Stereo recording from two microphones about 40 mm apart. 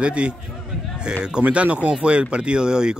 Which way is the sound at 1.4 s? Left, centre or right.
Right.